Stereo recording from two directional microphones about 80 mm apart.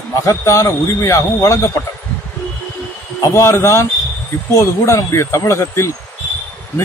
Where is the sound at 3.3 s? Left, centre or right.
Left.